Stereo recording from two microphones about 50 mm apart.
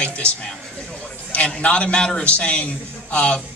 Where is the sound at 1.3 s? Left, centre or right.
Left.